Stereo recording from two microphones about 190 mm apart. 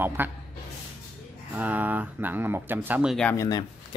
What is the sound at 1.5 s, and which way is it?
Speech, 10° right (ahead or behind).